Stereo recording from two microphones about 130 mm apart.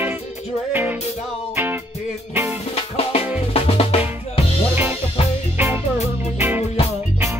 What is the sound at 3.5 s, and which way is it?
Drum, 50° left (ahead or behind).